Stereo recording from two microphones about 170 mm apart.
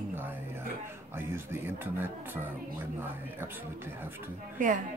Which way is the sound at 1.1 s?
15° right (ahead or behind).